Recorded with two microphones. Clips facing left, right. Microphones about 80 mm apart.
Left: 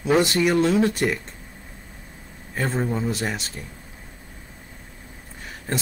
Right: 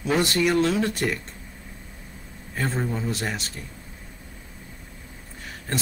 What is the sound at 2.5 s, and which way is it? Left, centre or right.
Speech, centre.